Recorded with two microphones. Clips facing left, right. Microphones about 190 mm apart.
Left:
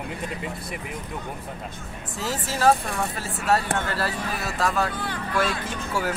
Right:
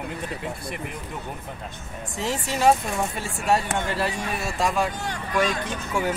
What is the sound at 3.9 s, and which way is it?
Speech, 25° right (ahead or behind).